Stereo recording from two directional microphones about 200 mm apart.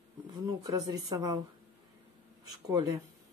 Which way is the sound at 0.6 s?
20° right (ahead or behind).